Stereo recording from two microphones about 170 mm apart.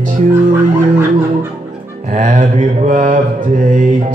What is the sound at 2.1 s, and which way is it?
Music, 50° right (ahead or behind).